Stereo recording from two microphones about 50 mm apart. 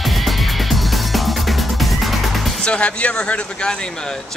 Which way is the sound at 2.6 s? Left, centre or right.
Left.